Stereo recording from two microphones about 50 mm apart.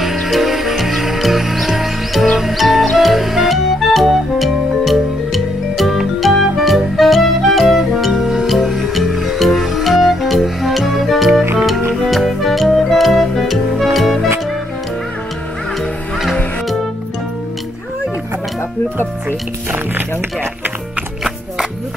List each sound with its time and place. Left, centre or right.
0.0 s music: centre